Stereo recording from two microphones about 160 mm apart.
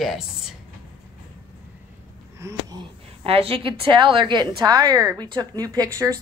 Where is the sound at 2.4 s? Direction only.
25° right (ahead or behind).